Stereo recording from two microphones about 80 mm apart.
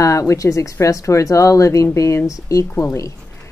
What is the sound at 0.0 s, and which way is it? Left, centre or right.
Speech, left.